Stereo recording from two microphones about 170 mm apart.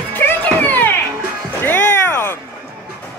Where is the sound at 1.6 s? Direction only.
10° left (ahead or behind).